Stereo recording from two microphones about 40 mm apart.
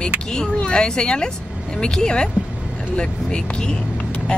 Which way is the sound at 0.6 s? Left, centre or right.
Left.